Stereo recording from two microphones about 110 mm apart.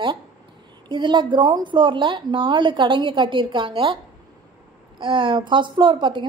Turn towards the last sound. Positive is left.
turn(degrees=-45)  # may be behind; listen again after turning